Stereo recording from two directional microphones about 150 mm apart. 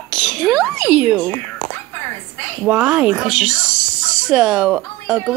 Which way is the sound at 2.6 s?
5° right (ahead or behind).